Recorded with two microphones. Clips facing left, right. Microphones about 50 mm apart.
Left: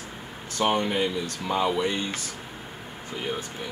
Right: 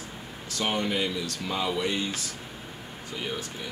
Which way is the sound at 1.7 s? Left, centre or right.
Centre.